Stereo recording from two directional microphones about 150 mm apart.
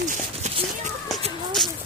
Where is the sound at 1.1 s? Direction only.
Centre (ahead or behind).